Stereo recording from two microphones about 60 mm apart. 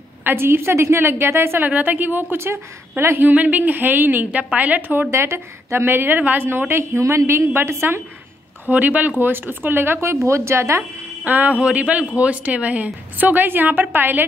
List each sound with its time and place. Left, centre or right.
0.2 s a woman's voice: right
1.6 s a woman's voice: right
3.3 s a woman's voice: right
5.1 s a woman's voice: right
6.7 s a woman's voice: right
8.6 s a woman's voice: right
10.2 s a woman's voice: right
11.2 s a woman's voice: right